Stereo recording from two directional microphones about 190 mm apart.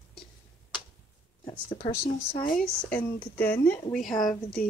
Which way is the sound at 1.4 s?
30° left (ahead or behind).